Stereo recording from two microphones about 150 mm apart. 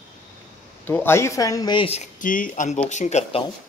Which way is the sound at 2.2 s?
65° left (ahead or behind).